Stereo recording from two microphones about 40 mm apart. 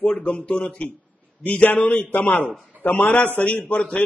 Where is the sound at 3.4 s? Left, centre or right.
Left.